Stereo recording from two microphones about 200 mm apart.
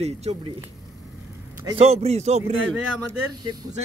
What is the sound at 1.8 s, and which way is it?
Speech, 30° right (ahead or behind).